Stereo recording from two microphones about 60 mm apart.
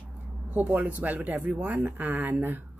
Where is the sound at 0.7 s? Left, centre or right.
Right.